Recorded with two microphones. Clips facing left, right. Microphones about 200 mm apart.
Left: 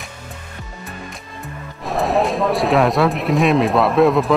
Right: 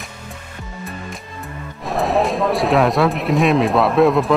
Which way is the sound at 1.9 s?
Centre (ahead or behind).